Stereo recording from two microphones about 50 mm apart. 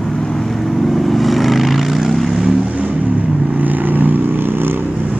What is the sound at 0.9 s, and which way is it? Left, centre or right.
Vehicle, centre.